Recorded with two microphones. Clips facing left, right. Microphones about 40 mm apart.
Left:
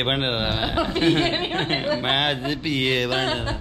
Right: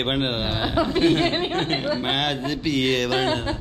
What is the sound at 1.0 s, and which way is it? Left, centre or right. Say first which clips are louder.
A woman's voice: left 1 dB; left.